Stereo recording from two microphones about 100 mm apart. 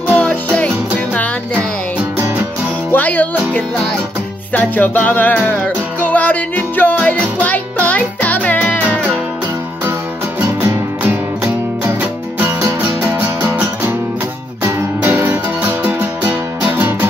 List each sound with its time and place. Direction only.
0.1 s music: 15° left (ahead or behind)
2.9 s music: 15° left (ahead or behind)
10.6 s music: 20° right (ahead or behind)
13.0 s music: 25° right (ahead or behind)